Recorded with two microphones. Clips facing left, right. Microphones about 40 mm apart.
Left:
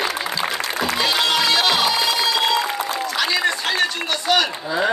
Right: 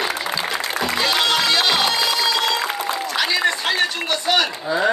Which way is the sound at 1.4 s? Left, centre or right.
Centre.